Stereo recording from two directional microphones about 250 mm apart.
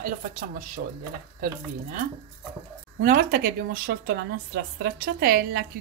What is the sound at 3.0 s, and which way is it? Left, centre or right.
A woman's voice, right.